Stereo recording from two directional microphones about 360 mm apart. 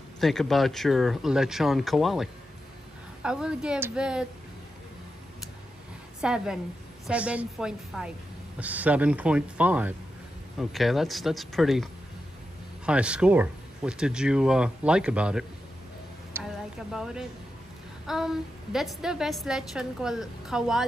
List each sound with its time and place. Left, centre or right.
0.2 s a woman's voice: centre
6.2 s a woman's voice: centre
16.3 s a sound: centre
18.0 s a woman's voice: centre